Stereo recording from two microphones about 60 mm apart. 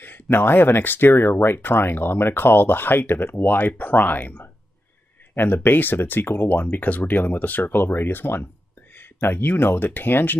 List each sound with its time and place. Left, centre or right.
0.0 s speech: left